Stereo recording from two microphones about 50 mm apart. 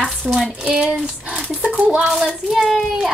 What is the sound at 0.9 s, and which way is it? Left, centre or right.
A woman's voice, right.